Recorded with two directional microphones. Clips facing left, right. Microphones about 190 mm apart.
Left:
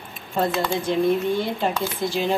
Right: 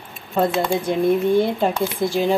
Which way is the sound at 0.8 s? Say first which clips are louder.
Right 2 dB; 55° right (ahead or behind).